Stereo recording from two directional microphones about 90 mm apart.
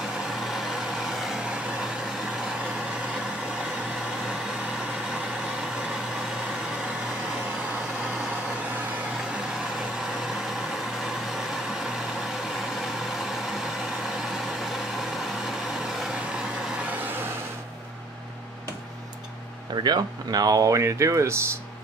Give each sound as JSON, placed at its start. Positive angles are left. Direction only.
{"t": 0.3, "sound": "vehicle", "side_deg": 0}
{"t": 11.1, "sound": "vehicle", "side_deg": -5}
{"t": 19.7, "sound": "speech", "side_deg": -50}